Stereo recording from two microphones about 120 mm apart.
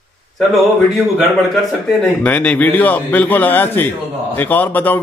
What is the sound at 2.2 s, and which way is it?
A man's voice, 15° left (ahead or behind).